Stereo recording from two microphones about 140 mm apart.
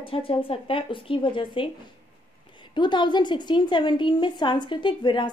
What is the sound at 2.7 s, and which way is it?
A woman's voice, 35° left (ahead or behind).